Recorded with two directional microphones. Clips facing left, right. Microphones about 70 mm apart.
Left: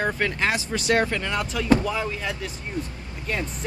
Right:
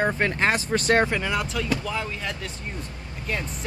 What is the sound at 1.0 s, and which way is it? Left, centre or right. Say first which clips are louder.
Speech: right 1 dB; centre.